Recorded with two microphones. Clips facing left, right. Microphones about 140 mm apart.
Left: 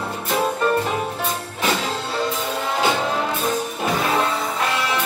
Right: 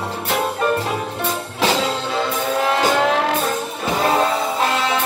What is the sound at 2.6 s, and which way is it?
Music, 85° right.